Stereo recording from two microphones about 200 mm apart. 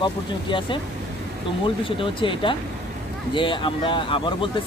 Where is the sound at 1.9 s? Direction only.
25° left (ahead or behind).